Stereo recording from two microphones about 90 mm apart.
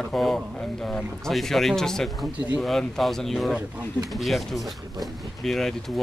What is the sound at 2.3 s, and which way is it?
Speech, 15° right (ahead or behind).